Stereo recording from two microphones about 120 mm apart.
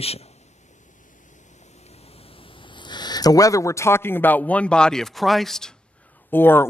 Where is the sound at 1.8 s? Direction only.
60° left (ahead or behind); by 5.8 s 5° left (ahead or behind).